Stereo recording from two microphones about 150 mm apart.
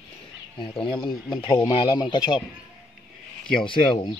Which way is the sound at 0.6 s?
30° left (ahead or behind).